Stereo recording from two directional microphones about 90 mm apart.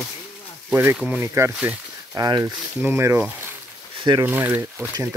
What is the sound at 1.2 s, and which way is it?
Speech, 30° right (ahead or behind).